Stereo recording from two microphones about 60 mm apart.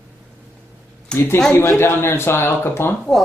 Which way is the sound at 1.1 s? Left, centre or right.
Left.